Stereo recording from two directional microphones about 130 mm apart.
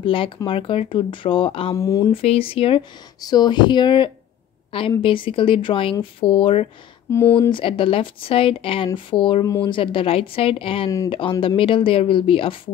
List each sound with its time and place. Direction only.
0.0 s speech: 40° left (ahead or behind)
1.8 s speech: 25° left (ahead or behind)
2.1 s speech: 45° left (ahead or behind)
3.2 s speech: 30° left (ahead or behind); by 6.7 s 45° left (ahead or behind)
7.1 s speech: 20° left (ahead or behind)
7.3 s speech: 35° left (ahead or behind)